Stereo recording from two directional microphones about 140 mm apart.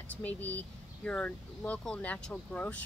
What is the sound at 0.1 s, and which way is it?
Speech, 10° left (ahead or behind).